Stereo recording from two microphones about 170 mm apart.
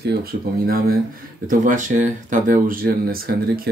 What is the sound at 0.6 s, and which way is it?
Speech, 60° right (ahead or behind).